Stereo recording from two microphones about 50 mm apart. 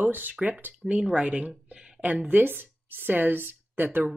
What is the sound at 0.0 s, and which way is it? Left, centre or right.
Speech, right.